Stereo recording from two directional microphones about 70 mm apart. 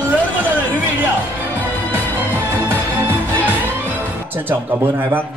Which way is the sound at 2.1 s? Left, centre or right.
Right.